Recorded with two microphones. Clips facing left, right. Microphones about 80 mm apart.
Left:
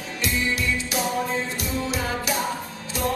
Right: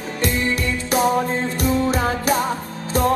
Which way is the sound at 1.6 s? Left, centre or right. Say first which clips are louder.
Right 8 dB; right.